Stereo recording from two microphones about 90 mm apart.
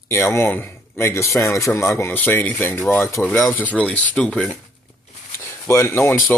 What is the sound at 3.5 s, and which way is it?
Speech, 15° left (ahead or behind).